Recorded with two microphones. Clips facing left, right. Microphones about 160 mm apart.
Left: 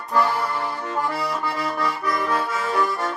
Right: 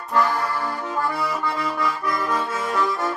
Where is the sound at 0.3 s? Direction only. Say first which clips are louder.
Even; 20° left (ahead or behind).